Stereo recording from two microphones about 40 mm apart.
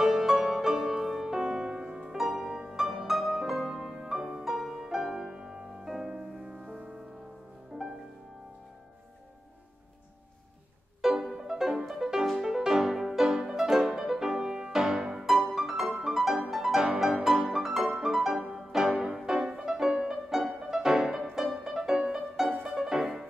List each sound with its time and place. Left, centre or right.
0.0 s music: centre
1.3 s music: right
2.0 s music: centre
6.4 s music: right
11.0 s music: centre